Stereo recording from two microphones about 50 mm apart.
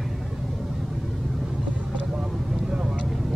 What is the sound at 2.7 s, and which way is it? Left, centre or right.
Vehicle, centre.